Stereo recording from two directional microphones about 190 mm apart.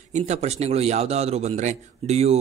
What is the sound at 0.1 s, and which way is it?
A man's voice, 35° right (ahead or behind).